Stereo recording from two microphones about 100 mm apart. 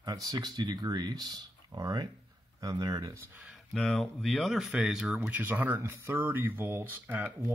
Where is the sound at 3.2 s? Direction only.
20° right (ahead or behind).